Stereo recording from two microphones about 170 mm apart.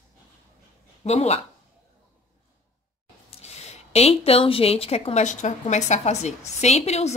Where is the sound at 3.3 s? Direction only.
40° left (ahead or behind).